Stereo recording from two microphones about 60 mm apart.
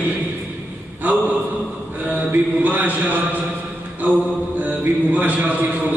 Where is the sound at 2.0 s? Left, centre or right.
Right.